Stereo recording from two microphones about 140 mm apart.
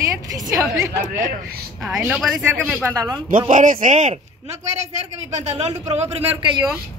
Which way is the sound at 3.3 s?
65° right (ahead or behind).